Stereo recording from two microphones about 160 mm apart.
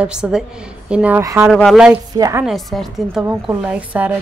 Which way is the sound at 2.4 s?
Centre (ahead or behind).